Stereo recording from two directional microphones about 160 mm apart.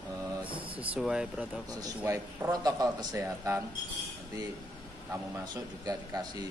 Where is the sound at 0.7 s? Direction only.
5° right (ahead or behind).